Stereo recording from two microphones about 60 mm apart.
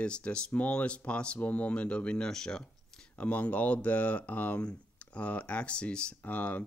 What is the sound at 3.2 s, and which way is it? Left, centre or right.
Speech, left.